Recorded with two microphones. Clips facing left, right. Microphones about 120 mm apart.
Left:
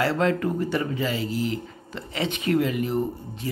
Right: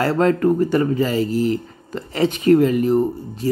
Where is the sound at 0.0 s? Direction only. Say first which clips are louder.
Right 6 dB; 45° right (ahead or behind).